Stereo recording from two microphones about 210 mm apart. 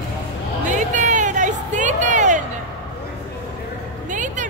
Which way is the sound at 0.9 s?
35° right (ahead or behind).